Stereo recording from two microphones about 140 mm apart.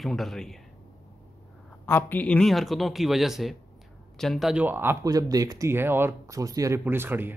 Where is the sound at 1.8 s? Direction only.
15° left (ahead or behind); by 5.1 s 15° right (ahead or behind).